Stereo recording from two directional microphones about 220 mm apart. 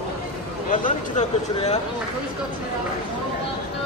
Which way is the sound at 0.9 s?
25° left (ahead or behind).